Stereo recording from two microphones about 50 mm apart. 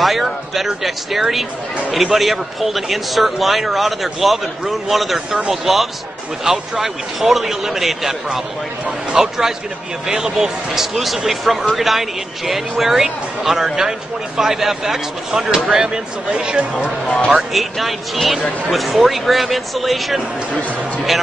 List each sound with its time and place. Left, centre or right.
0.0 s a man's voice: centre
16.3 s speech: right
17.4 s a man's voice: centre